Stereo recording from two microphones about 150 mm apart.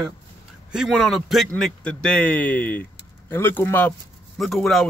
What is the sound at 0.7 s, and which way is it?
A man's voice, 5° right (ahead or behind).